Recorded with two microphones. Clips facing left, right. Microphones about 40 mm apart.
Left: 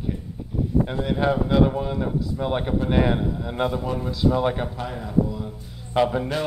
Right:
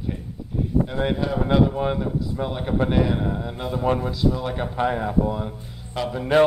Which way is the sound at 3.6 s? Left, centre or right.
Left.